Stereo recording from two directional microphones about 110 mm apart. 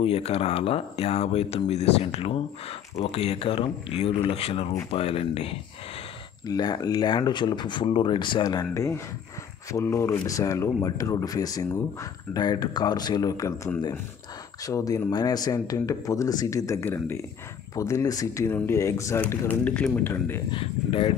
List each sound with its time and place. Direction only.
0.0 s speech: 65° left (ahead or behind)
6.4 s speech: 40° left (ahead or behind)
14.6 s speech: 30° left (ahead or behind)
19.2 s a man's voice: 15° left (ahead or behind)
20.5 s speech: 55° left (ahead or behind)